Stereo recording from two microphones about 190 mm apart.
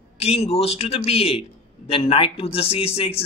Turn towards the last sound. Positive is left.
turn(degrees=30)  # may be behind; listen again after turning